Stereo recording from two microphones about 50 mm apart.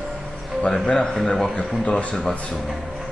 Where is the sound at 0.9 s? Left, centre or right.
Centre.